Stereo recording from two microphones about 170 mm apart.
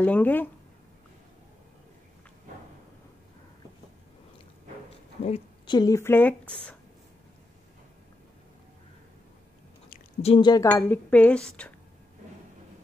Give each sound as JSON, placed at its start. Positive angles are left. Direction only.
{"t": 0.0, "sound": "speech", "side_deg": 10}
{"t": 5.2, "sound": "a woman's voice", "side_deg": 35}
{"t": 5.8, "sound": "speech", "side_deg": 20}
{"t": 10.2, "sound": "speech", "side_deg": 30}
{"t": 10.7, "sound": "speech", "side_deg": 10}